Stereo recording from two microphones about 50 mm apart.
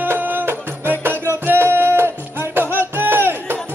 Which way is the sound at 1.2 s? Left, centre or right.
Right.